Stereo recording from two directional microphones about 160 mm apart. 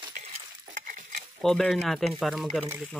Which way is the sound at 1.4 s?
5° left (ahead or behind).